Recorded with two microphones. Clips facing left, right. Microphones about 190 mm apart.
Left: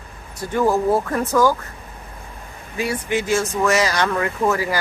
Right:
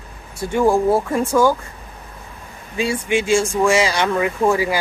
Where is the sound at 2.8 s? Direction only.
25° right (ahead or behind).